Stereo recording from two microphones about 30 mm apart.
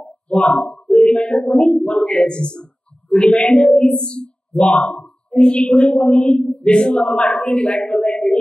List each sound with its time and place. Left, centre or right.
0.3 s a woman's voice: left
3.1 s speech: centre
3.6 s a sound: left
4.7 s a woman's voice: left